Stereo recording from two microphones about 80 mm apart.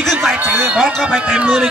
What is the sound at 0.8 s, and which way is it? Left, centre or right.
Speech, centre.